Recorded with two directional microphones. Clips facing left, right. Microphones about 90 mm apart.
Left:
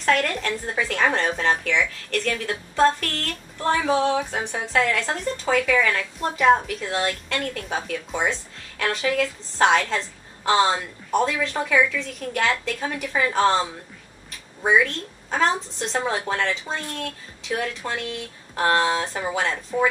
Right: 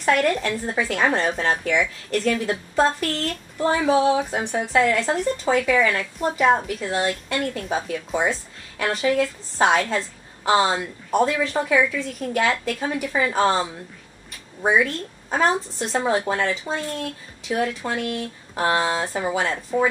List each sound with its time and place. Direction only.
0.0 s speech: 10° right (ahead or behind)